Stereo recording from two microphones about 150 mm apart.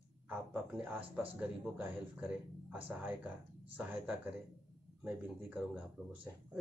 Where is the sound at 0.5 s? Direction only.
10° right (ahead or behind).